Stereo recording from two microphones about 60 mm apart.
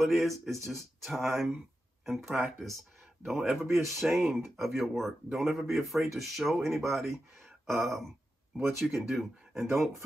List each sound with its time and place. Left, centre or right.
0.0 s speech: centre
9.7 s speech: right